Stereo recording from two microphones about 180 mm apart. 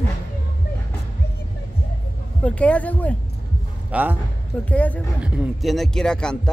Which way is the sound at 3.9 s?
10° right (ahead or behind).